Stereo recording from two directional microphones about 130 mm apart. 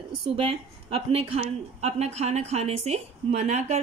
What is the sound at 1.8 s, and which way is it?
A woman's voice, 55° right (ahead or behind).